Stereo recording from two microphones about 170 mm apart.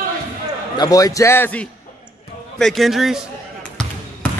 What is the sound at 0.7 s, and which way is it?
A man's voice, 20° left (ahead or behind).